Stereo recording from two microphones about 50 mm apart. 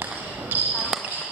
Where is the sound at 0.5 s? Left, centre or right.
Right.